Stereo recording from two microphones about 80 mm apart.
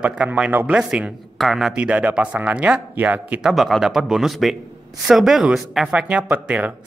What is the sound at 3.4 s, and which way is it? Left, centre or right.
Speech, centre.